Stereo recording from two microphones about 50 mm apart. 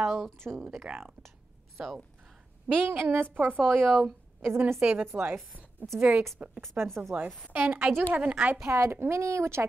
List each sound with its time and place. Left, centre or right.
0.0 s speech: centre
0.9 s a woman's voice: right
1.8 s speech: centre
2.7 s a woman's voice: right
3.6 s speech: centre
4.5 s speech: right
5.9 s a woman's voice: right
6.6 s a woman's voice: right
7.1 s a woman's voice: right
7.5 s a woman's voice: right
8.1 s a woman's voice: right
8.7 s a woman's voice: right
9.1 s speech: right